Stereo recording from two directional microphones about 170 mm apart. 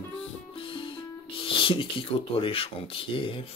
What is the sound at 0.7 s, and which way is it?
Speech, 30° left (ahead or behind).